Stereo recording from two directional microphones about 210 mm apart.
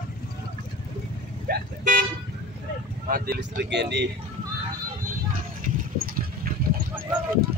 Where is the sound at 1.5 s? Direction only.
45° right (ahead or behind).